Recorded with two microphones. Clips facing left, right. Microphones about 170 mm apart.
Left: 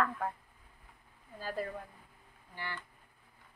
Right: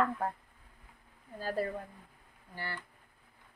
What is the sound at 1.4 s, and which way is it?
Speech, 45° right (ahead or behind).